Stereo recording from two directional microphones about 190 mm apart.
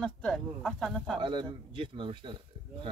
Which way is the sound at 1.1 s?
25° right (ahead or behind).